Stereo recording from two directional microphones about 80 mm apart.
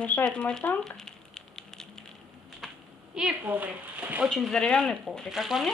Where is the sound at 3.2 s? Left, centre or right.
Right.